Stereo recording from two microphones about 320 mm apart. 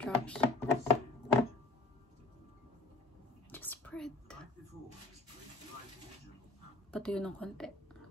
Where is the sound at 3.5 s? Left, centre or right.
Centre.